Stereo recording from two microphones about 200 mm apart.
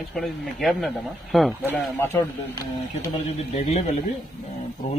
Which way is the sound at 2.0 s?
15° left (ahead or behind).